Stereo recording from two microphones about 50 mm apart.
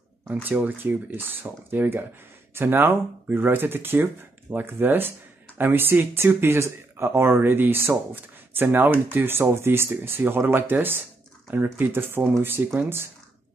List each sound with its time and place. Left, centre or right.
0.3 s speech: right